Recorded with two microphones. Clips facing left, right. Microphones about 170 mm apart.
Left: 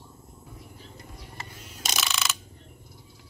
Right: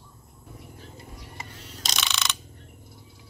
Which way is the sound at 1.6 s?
10° left (ahead or behind).